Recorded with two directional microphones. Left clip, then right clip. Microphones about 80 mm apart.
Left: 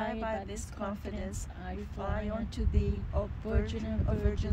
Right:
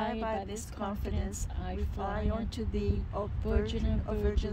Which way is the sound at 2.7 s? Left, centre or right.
Right.